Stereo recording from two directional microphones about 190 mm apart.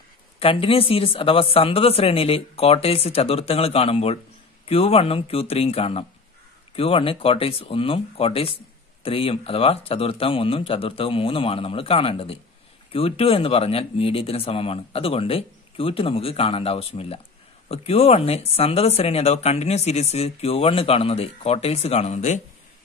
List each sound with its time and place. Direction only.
0.4 s speech: 30° left (ahead or behind)